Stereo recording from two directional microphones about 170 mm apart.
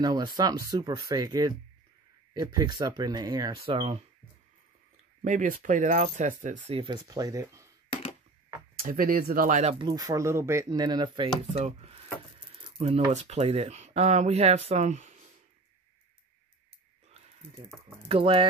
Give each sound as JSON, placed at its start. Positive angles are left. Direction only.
{"t": 0.0, "sound": "speech", "side_deg": -25}
{"t": 5.2, "sound": "speech", "side_deg": -50}
{"t": 6.7, "sound": "speech", "side_deg": -30}
{"t": 7.9, "sound": "a sound", "side_deg": 35}
{"t": 8.8, "sound": "speech", "side_deg": -55}
{"t": 9.8, "sound": "speech", "side_deg": -25}
{"t": 11.5, "sound": "speech", "side_deg": -40}
{"t": 18.0, "sound": "speech", "side_deg": -30}